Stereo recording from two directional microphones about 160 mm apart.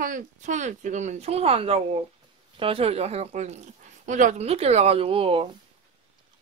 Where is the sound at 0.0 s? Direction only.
55° right (ahead or behind); by 5.6 s 35° right (ahead or behind).